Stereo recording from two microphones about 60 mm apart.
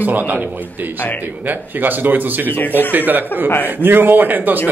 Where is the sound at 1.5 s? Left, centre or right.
Right.